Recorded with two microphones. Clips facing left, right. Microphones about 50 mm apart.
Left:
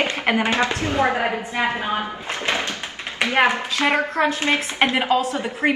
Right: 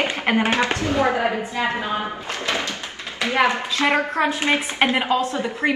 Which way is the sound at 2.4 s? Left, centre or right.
Left.